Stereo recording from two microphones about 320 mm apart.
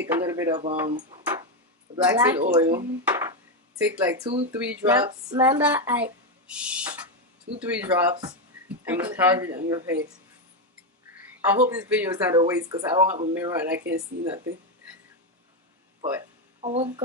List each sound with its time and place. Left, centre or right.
0.1 s speech: centre
11.1 s speech: centre
13.7 s speech: right
16.6 s speech: centre